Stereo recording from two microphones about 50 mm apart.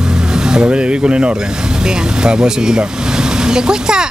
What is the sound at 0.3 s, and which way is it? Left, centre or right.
Speech, centre.